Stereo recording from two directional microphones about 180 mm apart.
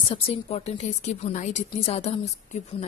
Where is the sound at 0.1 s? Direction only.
35° left (ahead or behind).